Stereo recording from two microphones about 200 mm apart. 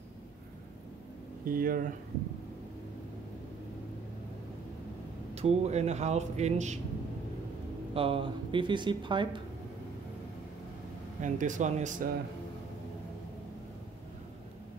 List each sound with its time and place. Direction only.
1.4 s speech: 45° right (ahead or behind)
5.3 s a man's voice: 30° right (ahead or behind)
7.9 s speech: 25° right (ahead or behind)
11.1 s a man's voice: 40° right (ahead or behind)